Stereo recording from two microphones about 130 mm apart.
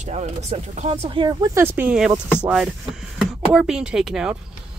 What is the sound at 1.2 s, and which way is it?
Speech, 20° right (ahead or behind).